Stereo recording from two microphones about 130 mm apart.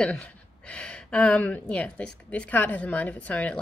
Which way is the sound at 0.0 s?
10° left (ahead or behind).